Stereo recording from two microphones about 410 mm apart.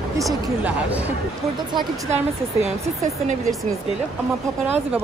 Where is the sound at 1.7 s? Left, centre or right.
Centre.